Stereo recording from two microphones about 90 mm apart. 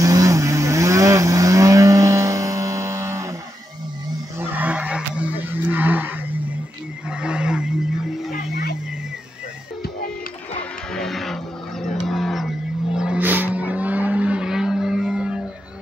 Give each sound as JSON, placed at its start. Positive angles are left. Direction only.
{"t": 0.0, "sound": "vehicle", "side_deg": -40}
{"t": 4.4, "sound": "skidding", "side_deg": -20}
{"t": 7.1, "sound": "a sound", "side_deg": -10}
{"t": 10.9, "sound": "music", "side_deg": 5}
{"t": 11.8, "sound": "wild animals", "side_deg": 0}
{"t": 13.2, "sound": "vehicle", "side_deg": -20}